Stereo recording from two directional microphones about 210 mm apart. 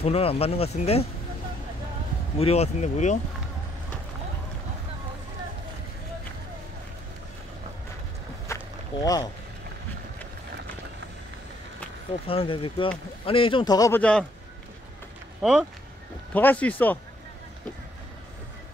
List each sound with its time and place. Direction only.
0.0 s speech: 30° left (ahead or behind)
2.3 s speech: 30° left (ahead or behind)
8.5 s walk: 15° left (ahead or behind)
12.3 s speech: 25° left (ahead or behind); by 14.2 s 10° left (ahead or behind)
16.3 s speech: 5° left (ahead or behind)